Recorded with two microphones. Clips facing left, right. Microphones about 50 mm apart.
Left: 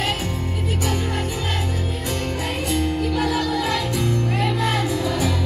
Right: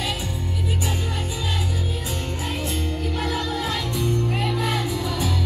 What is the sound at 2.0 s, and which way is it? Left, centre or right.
Music, left.